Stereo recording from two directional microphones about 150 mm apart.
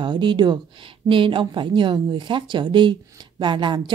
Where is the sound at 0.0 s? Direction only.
30° right (ahead or behind).